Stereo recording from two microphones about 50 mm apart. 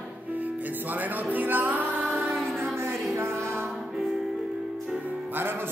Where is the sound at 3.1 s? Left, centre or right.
Right.